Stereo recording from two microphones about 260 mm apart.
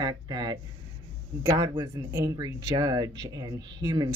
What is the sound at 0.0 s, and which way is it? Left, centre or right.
Speech, centre.